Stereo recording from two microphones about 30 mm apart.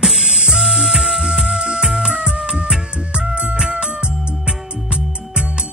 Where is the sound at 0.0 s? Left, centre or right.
Right.